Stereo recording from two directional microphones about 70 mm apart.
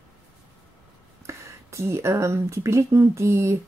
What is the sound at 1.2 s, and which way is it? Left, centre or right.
Speech, right.